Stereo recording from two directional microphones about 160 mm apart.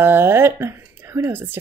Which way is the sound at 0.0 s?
15° right (ahead or behind).